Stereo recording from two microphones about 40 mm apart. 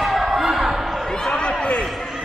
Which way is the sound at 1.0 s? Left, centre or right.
Centre.